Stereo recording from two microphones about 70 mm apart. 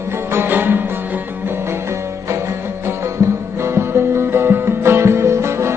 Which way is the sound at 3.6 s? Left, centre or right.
Right.